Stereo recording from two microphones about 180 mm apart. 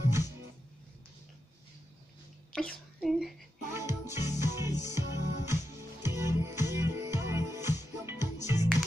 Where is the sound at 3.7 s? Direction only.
15° right (ahead or behind).